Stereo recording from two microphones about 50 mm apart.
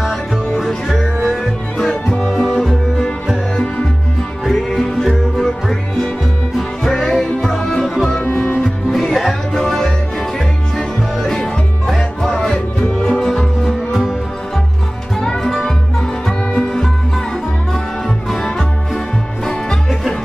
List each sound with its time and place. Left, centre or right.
0.1 s music: centre
2.3 s music: centre
4.5 s music: centre
6.8 s music: centre
8.1 s music: left
8.9 s music: centre; by 13.2 s left
13.2 s music: centre
15.1 s music: centre
18.3 s music: centre